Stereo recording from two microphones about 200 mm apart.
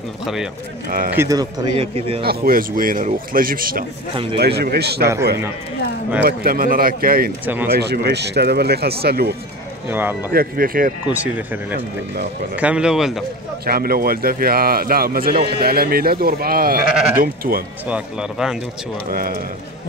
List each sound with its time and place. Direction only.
0.8 s speech: 45° right (ahead or behind)
1.1 s speech: 15° right (ahead or behind)
2.2 s speech: 45° right (ahead or behind)
4.1 s speech: 25° right (ahead or behind)
4.4 s speech: 55° right (ahead or behind)
6.2 s speech: 45° right (ahead or behind)
7.4 s speech: 10° right (ahead or behind)
7.7 s speech: 55° right (ahead or behind)
9.8 s speech: 10° right (ahead or behind)
10.3 s speech: 50° right (ahead or behind)
12.5 s speech: 5° right (ahead or behind)
13.7 s speech: 50° right (ahead or behind)
17.8 s speech: 5° right (ahead or behind)
19.0 s speech: 45° right (ahead or behind)